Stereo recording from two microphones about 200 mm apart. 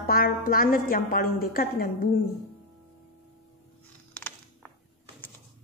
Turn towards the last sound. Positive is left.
turn(degrees=5)  # may be behind; listen again after turning